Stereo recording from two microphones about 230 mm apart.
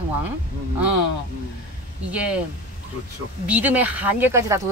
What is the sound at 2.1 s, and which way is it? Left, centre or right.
Speech, centre.